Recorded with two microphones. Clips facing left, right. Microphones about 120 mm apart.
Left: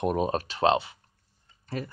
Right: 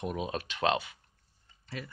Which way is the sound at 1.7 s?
45° left (ahead or behind).